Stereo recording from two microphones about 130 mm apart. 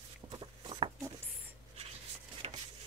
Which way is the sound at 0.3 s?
40° right (ahead or behind).